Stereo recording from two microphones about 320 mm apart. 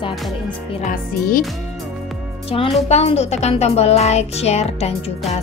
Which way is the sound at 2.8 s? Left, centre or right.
Centre.